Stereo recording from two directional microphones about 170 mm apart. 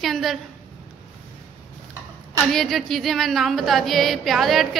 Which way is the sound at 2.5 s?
Centre (ahead or behind).